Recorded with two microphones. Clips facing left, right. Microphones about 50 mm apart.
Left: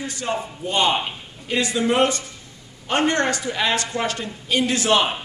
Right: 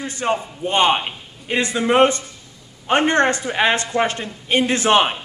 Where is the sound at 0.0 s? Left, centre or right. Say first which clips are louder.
Right 4 dB; right.